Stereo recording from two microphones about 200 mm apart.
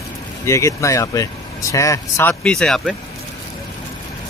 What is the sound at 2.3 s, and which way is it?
Speech, 5° left (ahead or behind).